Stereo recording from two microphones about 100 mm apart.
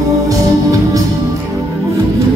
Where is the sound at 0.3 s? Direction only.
35° right (ahead or behind).